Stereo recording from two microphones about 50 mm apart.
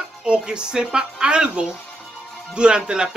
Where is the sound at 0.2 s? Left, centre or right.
Centre.